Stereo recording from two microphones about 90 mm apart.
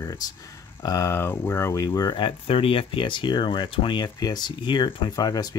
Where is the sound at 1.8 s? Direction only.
45° left (ahead or behind).